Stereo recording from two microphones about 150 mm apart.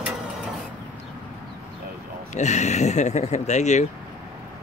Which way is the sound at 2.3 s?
50° left (ahead or behind).